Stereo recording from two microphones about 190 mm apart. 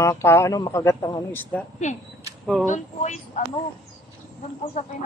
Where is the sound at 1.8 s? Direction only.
40° left (ahead or behind).